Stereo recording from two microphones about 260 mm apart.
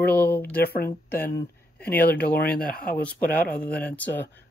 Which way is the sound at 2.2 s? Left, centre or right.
Left.